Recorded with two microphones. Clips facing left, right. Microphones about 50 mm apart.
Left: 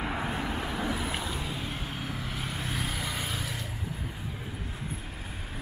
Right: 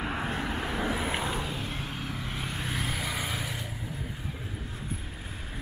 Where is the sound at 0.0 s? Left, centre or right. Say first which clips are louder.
Even; centre.